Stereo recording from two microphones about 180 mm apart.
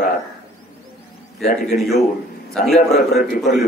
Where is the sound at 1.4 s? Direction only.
55° left (ahead or behind).